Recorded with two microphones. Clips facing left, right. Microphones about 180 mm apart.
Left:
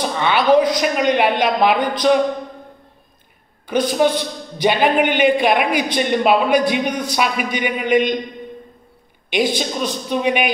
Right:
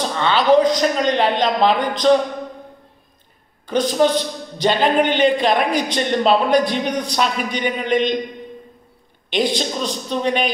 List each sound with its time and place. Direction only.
0.0 s a woman's voice: 15° left (ahead or behind)
3.6 s a woman's voice: 10° left (ahead or behind)
9.6 s a woman's voice: 10° left (ahead or behind)